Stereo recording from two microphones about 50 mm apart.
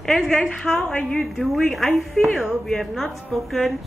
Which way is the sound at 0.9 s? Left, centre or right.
Centre.